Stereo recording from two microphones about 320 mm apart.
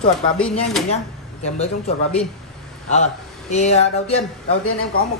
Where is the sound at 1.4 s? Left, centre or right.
Centre.